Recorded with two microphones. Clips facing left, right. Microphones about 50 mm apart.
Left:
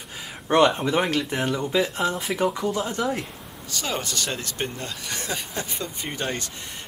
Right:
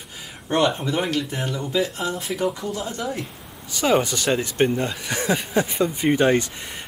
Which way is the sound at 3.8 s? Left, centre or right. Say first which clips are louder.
Right 9 dB; centre.